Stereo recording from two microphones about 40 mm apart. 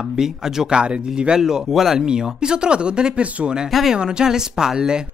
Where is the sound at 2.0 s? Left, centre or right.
Centre.